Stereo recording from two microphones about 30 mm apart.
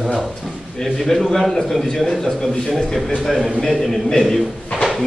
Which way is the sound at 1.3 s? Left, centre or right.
Centre.